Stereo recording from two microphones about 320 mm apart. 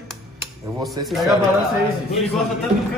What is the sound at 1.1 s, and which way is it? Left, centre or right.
Speech, centre.